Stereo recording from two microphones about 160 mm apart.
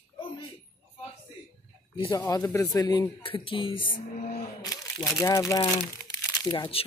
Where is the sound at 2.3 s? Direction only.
15° left (ahead or behind).